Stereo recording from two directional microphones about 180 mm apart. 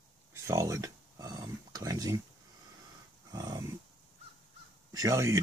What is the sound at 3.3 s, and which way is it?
Dog, 20° right (ahead or behind).